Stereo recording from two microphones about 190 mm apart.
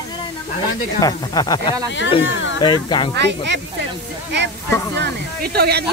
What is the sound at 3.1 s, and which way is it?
Speech, 65° right (ahead or behind).